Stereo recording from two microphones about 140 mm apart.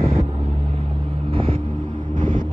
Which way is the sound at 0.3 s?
50° right (ahead or behind).